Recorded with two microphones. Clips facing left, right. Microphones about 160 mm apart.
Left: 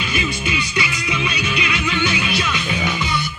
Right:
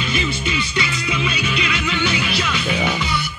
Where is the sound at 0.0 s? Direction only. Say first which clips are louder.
Right 1 dB; 10° left (ahead or behind).